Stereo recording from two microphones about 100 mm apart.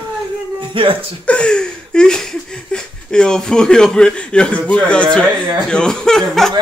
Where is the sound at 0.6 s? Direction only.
60° right (ahead or behind).